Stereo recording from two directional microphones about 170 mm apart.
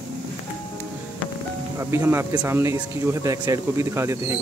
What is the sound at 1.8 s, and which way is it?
Speech, 15° right (ahead or behind).